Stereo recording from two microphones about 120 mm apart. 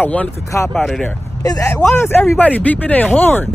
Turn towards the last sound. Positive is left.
turn(degrees=15)  # may be behind; listen again after turning